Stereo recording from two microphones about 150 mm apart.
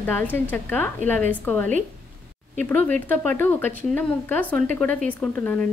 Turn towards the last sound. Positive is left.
turn(degrees=10)  # may be behind; listen again after turning